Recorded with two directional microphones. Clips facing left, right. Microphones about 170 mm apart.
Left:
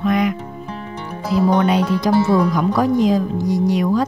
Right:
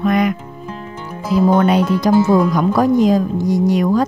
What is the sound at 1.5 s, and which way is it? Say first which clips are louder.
Speech: right 3 dB; 50° right (ahead or behind).